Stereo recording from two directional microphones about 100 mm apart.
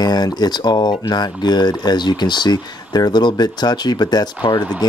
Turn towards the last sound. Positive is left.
turn(degrees=50)  # may be behind; listen again after turning